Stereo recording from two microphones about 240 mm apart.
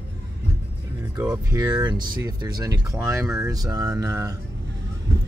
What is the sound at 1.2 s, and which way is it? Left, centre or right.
Speech, centre.